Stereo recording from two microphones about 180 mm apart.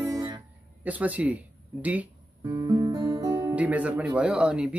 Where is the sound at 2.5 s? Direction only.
20° right (ahead or behind).